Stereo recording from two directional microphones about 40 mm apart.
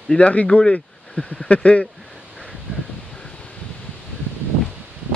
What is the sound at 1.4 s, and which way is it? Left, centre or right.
Speech, left.